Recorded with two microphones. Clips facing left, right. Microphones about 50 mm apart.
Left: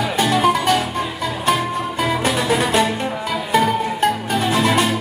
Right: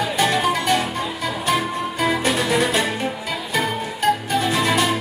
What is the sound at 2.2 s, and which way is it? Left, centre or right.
Music, left.